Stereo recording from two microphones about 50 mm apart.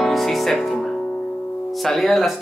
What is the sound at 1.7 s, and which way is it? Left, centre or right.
Speech, centre.